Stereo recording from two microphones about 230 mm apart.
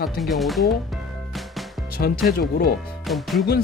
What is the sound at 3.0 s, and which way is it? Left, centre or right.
Speech, centre.